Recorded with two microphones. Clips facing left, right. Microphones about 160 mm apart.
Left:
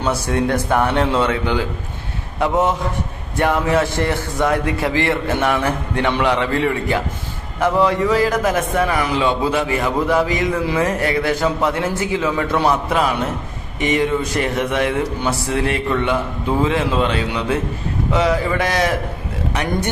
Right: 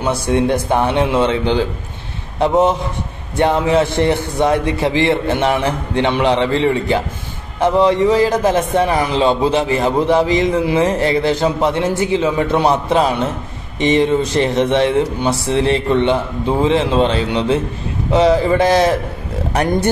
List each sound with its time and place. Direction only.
0.3 s a man's voice: 20° right (ahead or behind)